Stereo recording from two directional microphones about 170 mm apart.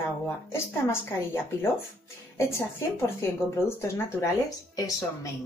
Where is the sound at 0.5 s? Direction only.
15° left (ahead or behind).